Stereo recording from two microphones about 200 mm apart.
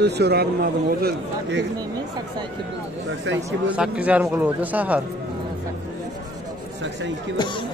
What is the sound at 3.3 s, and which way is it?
A man's voice, 5° right (ahead or behind).